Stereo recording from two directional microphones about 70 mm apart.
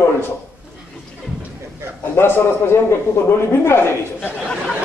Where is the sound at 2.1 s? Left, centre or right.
Left.